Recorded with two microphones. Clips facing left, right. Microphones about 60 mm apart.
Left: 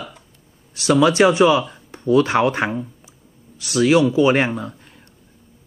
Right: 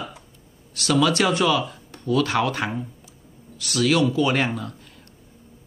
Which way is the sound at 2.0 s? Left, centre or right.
Left.